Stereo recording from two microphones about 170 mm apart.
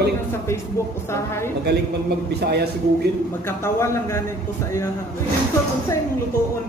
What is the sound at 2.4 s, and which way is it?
Speech, 70° right (ahead or behind).